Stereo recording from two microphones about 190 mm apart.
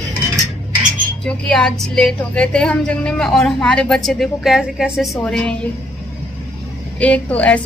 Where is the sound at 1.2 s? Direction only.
5° left (ahead or behind).